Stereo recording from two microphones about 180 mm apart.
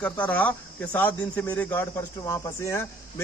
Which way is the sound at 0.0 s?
10° left (ahead or behind).